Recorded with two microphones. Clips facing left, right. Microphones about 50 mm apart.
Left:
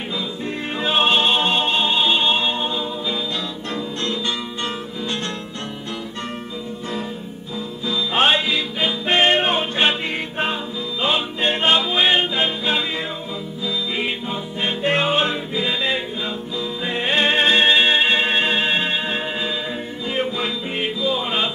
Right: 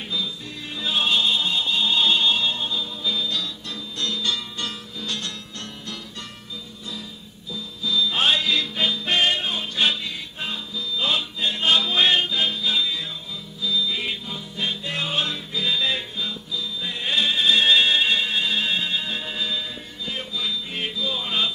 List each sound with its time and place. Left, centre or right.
0.7 s music: left
2.0 s music: left
7.8 s music: left
8.5 s music: centre
9.0 s music: left
11.0 s music: left
11.8 s music: centre; by 20.5 s left
20.7 s music: left